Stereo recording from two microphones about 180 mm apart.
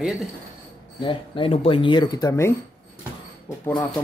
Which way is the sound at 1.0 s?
30° left (ahead or behind).